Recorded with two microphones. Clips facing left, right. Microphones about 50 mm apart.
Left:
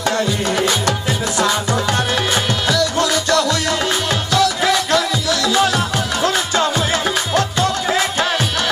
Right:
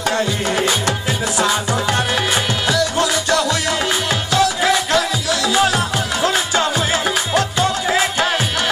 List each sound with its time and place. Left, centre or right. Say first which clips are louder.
0.5 s music: left 1 dB; centre
2.7 s music: left 1 dB; right